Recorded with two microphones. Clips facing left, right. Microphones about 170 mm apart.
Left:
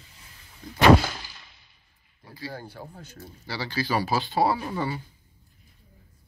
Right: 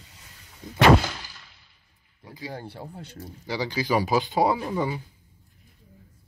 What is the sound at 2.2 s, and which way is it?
Speech, 20° right (ahead or behind).